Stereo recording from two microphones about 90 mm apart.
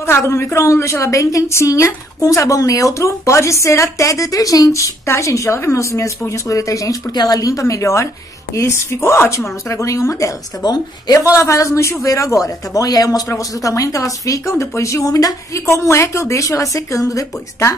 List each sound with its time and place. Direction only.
0.0 s a woman's voice: 30° left (ahead or behind); by 11.1 s 45° left (ahead or behind)
11.3 s a woman's voice: 35° left (ahead or behind)
15.6 s a woman's voice: 30° left (ahead or behind)